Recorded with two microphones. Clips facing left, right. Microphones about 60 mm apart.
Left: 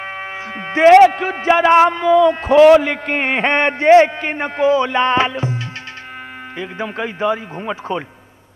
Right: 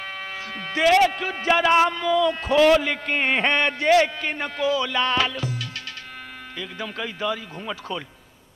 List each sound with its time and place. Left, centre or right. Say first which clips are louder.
0.0 s speech: left 6 dB; left